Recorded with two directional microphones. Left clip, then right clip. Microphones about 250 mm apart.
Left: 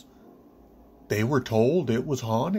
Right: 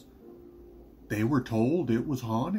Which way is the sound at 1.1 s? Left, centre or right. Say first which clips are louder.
Left 4 dB; left.